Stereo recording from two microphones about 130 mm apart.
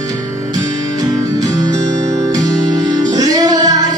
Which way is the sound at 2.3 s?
30° right (ahead or behind).